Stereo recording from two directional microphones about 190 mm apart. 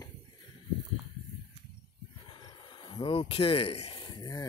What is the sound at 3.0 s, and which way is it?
Speech, 30° left (ahead or behind).